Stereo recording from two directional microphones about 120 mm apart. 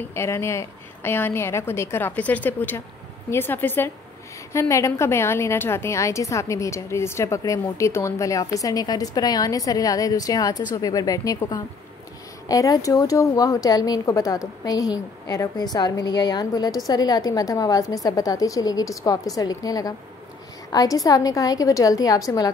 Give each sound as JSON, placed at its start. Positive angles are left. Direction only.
{"t": 0.0, "sound": "a woman's voice", "side_deg": 20}